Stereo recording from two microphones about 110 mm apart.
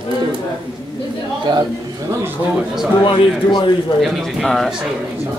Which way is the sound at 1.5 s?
40° right (ahead or behind).